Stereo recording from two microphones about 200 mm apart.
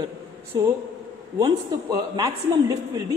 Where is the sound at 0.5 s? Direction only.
20° right (ahead or behind).